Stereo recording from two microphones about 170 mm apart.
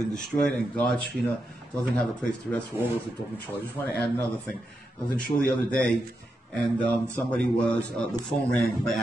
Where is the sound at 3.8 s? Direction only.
15° left (ahead or behind).